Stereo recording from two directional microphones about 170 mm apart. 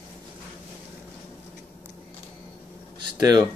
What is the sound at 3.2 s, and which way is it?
Speech, 20° right (ahead or behind).